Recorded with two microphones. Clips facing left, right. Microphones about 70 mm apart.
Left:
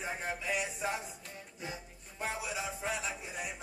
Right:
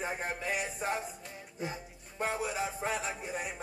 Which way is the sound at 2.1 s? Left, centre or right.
Right.